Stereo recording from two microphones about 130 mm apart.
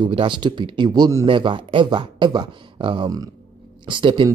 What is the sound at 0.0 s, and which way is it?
Speech, 40° right (ahead or behind).